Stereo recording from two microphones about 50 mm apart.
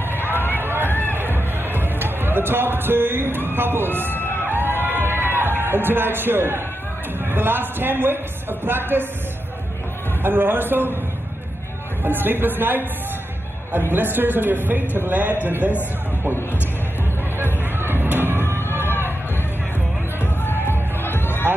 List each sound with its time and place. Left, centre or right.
0.1 s a sound: left
0.6 s run: right
0.8 s music: left
1.1 s music: right
4.8 s a sound: right
5.3 s a man's voice: right
10.2 s a man's voice: right
12.0 s a man's voice: right
17.7 s music: right
18.0 s vehicle: right
18.6 s a sound: left
20.6 s music: left